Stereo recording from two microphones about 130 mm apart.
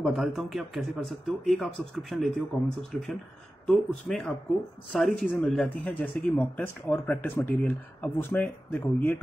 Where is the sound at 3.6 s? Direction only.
5° left (ahead or behind).